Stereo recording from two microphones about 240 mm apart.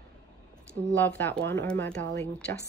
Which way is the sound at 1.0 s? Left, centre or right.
Centre.